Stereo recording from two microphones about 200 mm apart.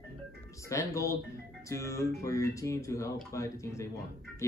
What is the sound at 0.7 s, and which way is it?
Speech, 15° left (ahead or behind).